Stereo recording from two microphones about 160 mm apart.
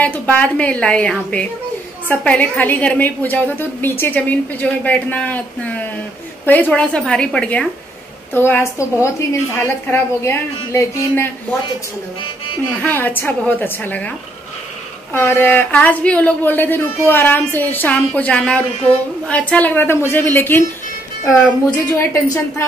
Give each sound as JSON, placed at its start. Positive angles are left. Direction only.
{"t": 0.0, "sound": "a woman's voice", "side_deg": 10}
{"t": 12.7, "sound": "a woman's voice", "side_deg": 10}
{"t": 15.1, "sound": "a woman's voice", "side_deg": 15}
{"t": 21.9, "sound": "a woman's voice", "side_deg": 20}